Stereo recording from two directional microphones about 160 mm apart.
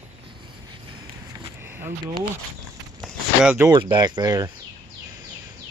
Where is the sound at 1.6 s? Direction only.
15° right (ahead or behind).